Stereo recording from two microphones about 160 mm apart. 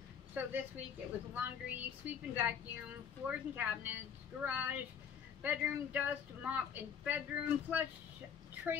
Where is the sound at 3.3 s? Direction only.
10° right (ahead or behind).